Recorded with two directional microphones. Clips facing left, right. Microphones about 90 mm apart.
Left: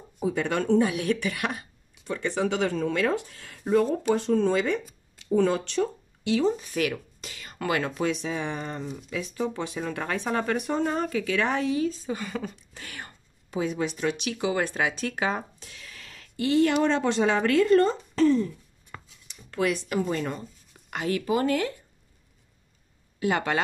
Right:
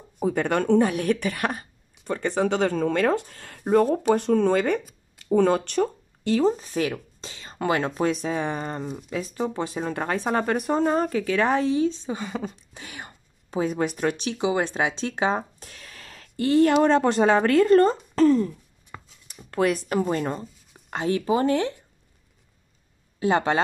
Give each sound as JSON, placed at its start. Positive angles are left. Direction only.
{"t": 0.2, "sound": "speech", "side_deg": -50}
{"t": 13.5, "sound": "speech", "side_deg": -40}
{"t": 14.4, "sound": "speech", "side_deg": -20}
{"t": 15.6, "sound": "a sound", "side_deg": -40}
{"t": 16.8, "sound": "speech", "side_deg": -40}
{"t": 23.1, "sound": "speech", "side_deg": -30}